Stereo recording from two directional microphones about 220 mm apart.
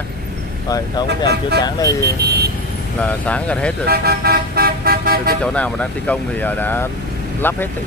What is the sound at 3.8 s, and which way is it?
Speech, 45° right (ahead or behind).